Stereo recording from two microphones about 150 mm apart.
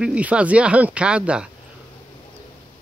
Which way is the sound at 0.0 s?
10° right (ahead or behind).